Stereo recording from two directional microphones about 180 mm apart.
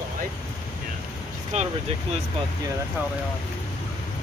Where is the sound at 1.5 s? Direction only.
40° right (ahead or behind).